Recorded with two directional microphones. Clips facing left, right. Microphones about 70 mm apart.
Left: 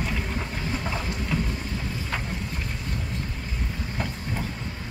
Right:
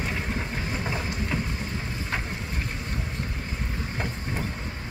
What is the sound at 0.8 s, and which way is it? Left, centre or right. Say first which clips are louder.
Vehicle: even; centre.